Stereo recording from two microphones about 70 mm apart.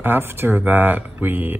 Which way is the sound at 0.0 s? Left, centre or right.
Right.